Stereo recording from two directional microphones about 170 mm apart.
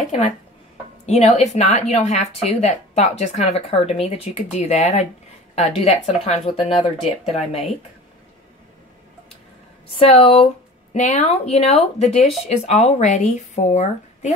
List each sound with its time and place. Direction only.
1.0 s speech: 40° left (ahead or behind)
9.9 s speech: 30° left (ahead or behind)